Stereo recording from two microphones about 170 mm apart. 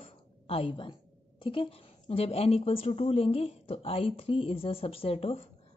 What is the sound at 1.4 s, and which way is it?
A woman's voice, 30° left (ahead or behind).